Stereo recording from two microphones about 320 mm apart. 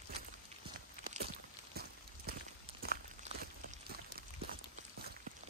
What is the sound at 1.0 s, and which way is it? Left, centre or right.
Walk, right.